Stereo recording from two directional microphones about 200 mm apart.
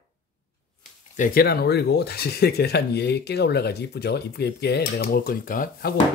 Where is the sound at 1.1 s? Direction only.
45° left (ahead or behind).